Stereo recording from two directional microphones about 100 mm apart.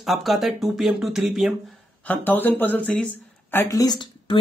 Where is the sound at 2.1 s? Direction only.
20° left (ahead or behind).